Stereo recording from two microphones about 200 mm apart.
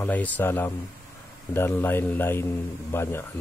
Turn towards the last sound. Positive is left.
turn(degrees=10)  # may be behind; listen again after turning